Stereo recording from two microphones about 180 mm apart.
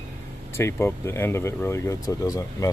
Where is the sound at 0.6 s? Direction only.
15° left (ahead or behind).